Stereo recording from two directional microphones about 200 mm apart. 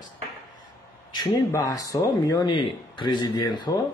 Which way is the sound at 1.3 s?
15° left (ahead or behind).